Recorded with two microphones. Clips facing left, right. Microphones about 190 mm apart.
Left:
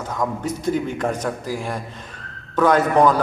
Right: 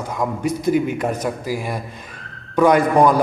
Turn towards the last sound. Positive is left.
turn(degrees=-10)  # may be behind; listen again after turning